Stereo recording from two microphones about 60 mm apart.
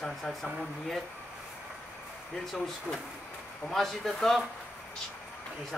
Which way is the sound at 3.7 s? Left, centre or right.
Centre.